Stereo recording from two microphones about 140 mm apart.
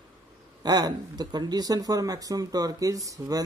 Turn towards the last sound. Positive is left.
turn(degrees=-25)  # may be behind; listen again after turning